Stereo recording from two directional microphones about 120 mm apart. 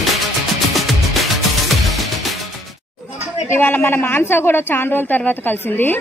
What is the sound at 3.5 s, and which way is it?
A woman's voice, 15° left (ahead or behind).